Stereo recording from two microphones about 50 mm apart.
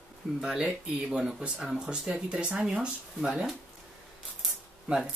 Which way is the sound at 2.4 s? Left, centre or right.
Centre.